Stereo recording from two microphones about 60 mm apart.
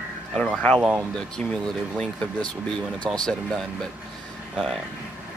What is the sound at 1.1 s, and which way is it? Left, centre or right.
Speech, centre.